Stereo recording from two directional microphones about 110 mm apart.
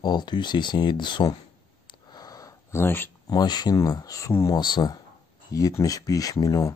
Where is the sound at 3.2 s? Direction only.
40° left (ahead or behind).